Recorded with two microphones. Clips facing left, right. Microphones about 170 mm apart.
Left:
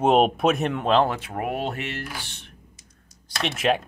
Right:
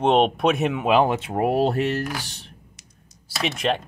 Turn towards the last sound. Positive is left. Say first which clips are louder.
# left 1 dB
turn(degrees=0)  # may be behind; listen again after turning